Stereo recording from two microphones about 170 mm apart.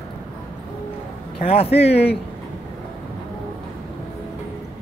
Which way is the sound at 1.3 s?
35° left (ahead or behind).